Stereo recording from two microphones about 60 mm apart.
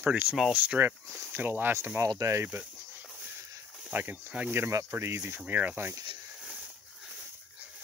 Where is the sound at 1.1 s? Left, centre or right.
Right.